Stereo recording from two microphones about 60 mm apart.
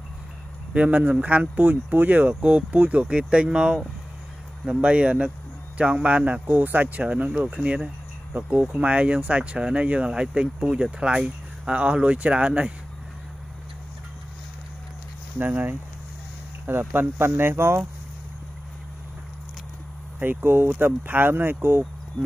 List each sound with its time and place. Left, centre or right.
0.7 s speech: right
15.3 s speech: right
20.2 s speech: right